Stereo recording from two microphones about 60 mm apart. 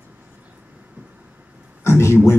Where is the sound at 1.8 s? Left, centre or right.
Left.